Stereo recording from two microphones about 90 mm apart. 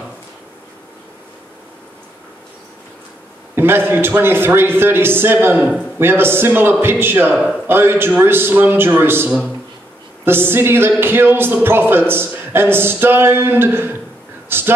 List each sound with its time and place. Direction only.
3.5 s a man's voice: 25° right (ahead or behind)